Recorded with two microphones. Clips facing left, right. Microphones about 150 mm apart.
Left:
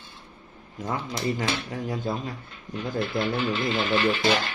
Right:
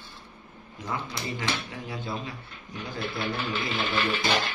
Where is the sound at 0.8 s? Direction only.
45° left (ahead or behind).